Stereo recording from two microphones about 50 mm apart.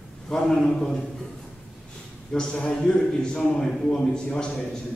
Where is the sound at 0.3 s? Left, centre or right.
Centre.